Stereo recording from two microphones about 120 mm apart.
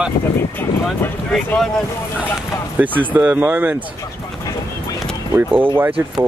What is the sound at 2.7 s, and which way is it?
Speech, 15° right (ahead or behind).